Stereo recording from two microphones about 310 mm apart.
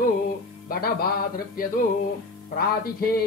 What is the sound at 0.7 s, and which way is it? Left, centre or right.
Speech, left.